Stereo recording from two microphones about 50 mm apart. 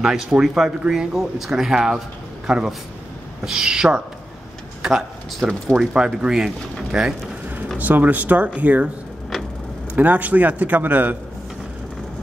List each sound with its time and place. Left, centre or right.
0.0 s a man's voice: centre
7.7 s a man's voice: right
9.9 s a man's voice: right